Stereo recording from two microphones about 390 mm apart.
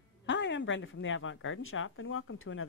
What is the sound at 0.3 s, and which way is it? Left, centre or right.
Speech, left.